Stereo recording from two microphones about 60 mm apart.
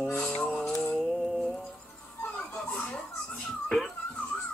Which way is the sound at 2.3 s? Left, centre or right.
Left.